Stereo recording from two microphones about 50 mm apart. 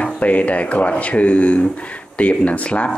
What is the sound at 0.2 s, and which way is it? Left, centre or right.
Speech, left.